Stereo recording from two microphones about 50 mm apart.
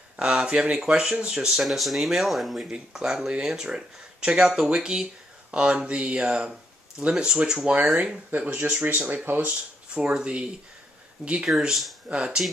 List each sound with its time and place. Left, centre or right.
0.2 s speech: centre
2.6 s speech: centre
8.3 s speech: right
10.1 s speech: centre
11.4 s speech: centre